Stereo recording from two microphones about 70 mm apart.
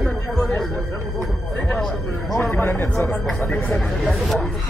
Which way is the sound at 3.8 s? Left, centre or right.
Centre.